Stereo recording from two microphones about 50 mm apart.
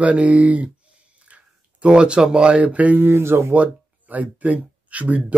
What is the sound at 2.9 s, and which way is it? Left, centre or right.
Speech, right.